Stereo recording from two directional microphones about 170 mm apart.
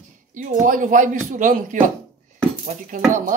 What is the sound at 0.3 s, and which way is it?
Speech, 50° right (ahead or behind).